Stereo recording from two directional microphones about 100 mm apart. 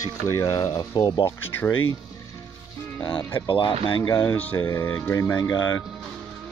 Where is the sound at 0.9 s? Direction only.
50° left (ahead or behind).